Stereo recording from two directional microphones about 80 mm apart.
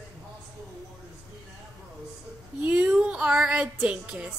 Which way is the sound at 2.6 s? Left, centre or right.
Centre.